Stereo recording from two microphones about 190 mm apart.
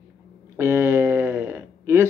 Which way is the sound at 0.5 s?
10° right (ahead or behind).